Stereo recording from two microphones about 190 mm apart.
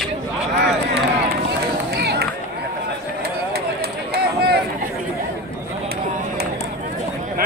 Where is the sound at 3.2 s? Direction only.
55° right (ahead or behind).